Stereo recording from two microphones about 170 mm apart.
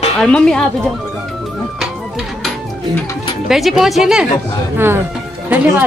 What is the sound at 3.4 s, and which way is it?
Speech, centre (ahead or behind).